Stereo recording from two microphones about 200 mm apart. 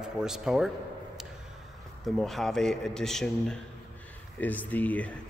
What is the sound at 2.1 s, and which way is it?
Speech, centre (ahead or behind).